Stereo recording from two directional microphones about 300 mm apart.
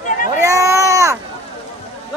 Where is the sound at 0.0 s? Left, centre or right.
Left.